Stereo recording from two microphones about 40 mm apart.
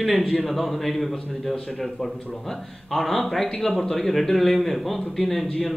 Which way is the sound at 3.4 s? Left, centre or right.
Centre.